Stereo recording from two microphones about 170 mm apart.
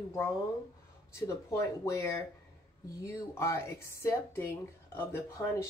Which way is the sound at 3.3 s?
15° left (ahead or behind).